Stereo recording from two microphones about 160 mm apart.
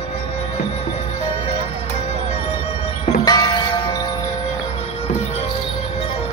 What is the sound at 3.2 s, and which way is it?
Music, 25° left (ahead or behind).